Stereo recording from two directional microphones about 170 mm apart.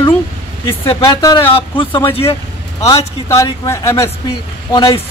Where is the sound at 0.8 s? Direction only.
20° left (ahead or behind).